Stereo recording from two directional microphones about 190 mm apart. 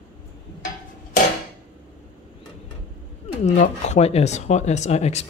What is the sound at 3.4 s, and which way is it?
Speech, 35° left (ahead or behind).